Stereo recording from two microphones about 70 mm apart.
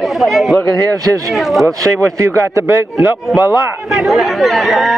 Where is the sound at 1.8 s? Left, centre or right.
Right.